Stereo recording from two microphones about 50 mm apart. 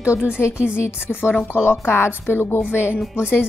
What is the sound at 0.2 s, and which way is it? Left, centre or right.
A woman's voice, left.